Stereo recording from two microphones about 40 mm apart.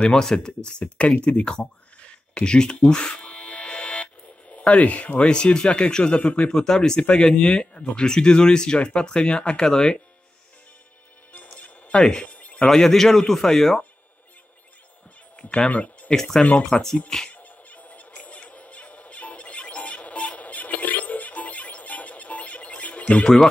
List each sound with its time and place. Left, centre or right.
0.0 s a man's voice: centre
0.7 s speech: left
1.2 s a sound: left
5.2 s speech: left
6.5 s speech: centre
12.0 s speech: left
12.3 s a sound: left
12.6 s a man's voice: centre
15.7 s speech: left
16.1 s a man's voice: centre
17.3 s music: left